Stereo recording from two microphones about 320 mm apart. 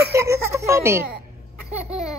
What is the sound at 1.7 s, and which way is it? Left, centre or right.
Laughter, centre.